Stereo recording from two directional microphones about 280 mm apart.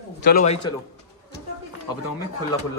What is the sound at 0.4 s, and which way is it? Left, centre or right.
Speech, left.